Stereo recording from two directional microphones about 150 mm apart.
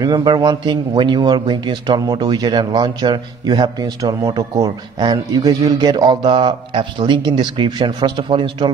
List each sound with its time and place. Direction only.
0.0 s a man's voice: 30° right (ahead or behind)